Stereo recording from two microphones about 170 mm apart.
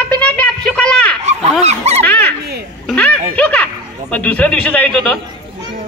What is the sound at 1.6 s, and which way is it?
Dog, 40° right (ahead or behind).